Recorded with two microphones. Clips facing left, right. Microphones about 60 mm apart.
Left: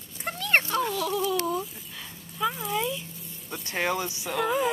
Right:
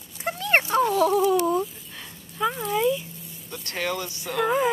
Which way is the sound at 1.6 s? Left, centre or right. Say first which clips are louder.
Right 6 dB; centre.